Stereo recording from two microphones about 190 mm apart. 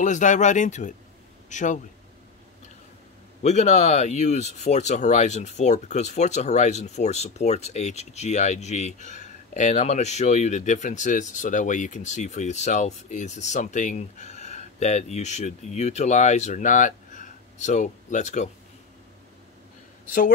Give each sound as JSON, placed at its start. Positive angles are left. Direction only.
{"t": 0.0, "sound": "speech", "side_deg": 40}
{"t": 3.4, "sound": "speech", "side_deg": 35}